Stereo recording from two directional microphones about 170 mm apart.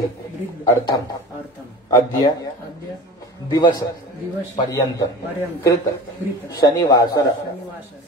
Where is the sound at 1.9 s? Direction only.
20° left (ahead or behind).